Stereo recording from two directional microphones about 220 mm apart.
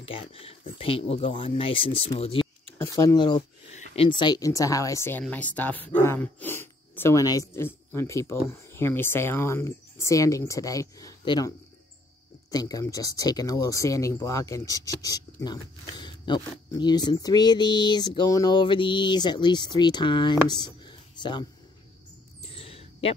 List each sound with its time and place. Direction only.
0.0 s speech: 25° left (ahead or behind)
2.9 s speech: 15° left (ahead or behind)
3.7 s speech: 30° left (ahead or behind)
22.5 s a sound: 25° left (ahead or behind)